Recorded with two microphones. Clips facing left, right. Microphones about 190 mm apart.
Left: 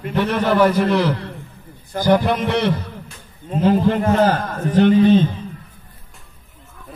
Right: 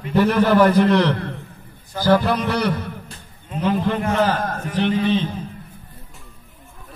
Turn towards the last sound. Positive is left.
turn(degrees=45)  # may be behind; listen again after turning